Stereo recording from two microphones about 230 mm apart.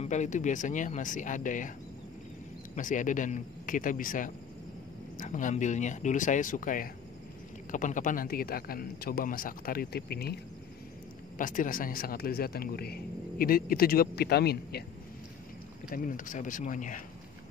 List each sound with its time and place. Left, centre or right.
0.0 s speech: left
2.7 s speech: left
15.9 s speech: left